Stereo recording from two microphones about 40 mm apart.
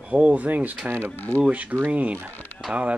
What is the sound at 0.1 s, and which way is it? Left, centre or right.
A child's voice, right.